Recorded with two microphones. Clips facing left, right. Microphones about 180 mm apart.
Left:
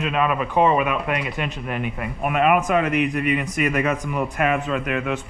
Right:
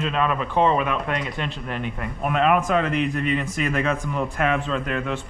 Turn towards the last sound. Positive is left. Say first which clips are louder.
# left 2 dB
turn(degrees=10)  # may be behind; listen again after turning